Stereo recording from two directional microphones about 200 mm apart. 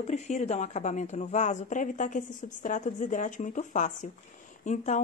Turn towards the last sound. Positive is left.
turn(degrees=35)  # may be behind; listen again after turning